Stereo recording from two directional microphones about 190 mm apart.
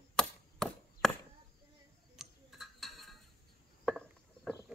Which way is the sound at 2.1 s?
Centre (ahead or behind).